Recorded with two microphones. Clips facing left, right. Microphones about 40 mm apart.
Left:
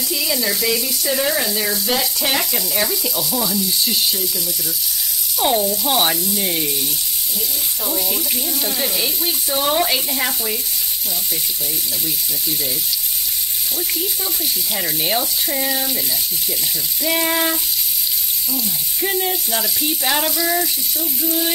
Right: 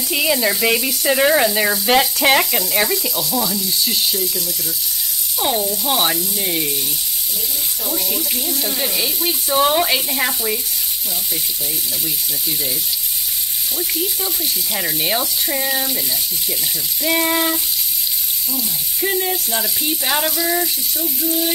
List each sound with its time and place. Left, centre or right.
0.1 s speech: right
1.9 s frying: right
2.7 s speech: centre
3.3 s frying: centre
5.4 s frying: centre
7.8 s frying: centre
9.5 s speech: centre
13.7 s speech: centre
17.0 s frying: centre